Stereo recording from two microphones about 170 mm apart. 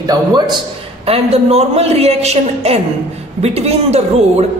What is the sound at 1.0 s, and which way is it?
A woman's voice, 35° right (ahead or behind).